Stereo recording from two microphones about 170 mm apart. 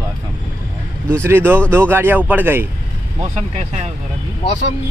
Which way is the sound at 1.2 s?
15° right (ahead or behind).